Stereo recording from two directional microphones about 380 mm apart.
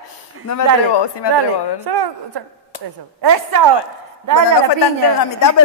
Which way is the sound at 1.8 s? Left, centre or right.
Right.